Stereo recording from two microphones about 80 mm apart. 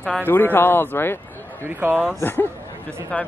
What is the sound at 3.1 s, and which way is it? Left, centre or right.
Speech, centre.